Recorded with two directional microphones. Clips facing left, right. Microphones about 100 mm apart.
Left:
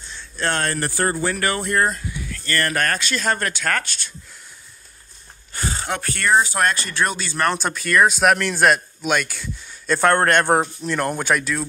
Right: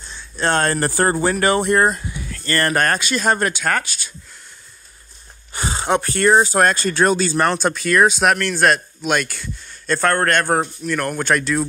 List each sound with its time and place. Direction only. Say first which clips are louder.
0.4 s speech: right 5 dB; 30° right (ahead or behind)
1.3 s speech: right 5 dB; 20° right (ahead or behind)
3.0 s speech: right 4 dB; 15° right (ahead or behind)
5.5 s speech: right 6 dB; 20° right (ahead or behind); by 7.3 s 35° right (ahead or behind)
7.5 s speech: right 2 dB; centre (ahead or behind)
8.4 s a man's voice: right 1 dB; 10° left (ahead or behind)
11.1 s a man's voice: right 2 dB; 10° left (ahead or behind)